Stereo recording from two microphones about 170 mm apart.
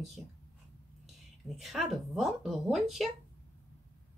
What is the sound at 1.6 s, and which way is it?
Speech, centre (ahead or behind).